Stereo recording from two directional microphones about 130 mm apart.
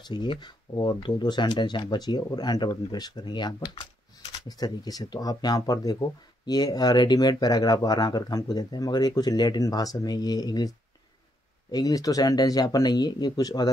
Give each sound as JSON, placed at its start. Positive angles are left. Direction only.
{"t": 0.0, "sound": "speech", "side_deg": 35}
{"t": 11.7, "sound": "speech", "side_deg": 30}